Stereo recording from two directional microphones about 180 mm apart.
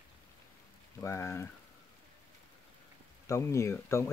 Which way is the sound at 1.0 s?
15° left (ahead or behind).